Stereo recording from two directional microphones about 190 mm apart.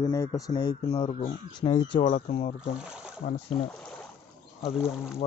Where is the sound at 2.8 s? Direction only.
5° right (ahead or behind).